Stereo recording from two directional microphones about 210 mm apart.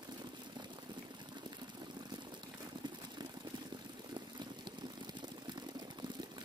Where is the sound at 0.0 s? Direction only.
20° right (ahead or behind).